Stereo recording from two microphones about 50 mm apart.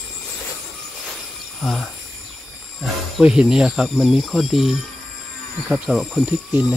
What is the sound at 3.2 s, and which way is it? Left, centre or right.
Speech, centre.